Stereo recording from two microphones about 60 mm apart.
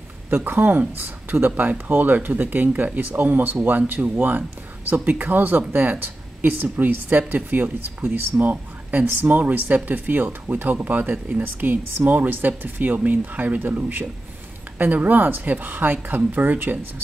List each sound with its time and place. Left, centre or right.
0.3 s speech: right